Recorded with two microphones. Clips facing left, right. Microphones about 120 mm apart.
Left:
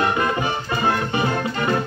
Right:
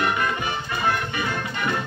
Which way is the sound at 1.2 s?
40° left (ahead or behind).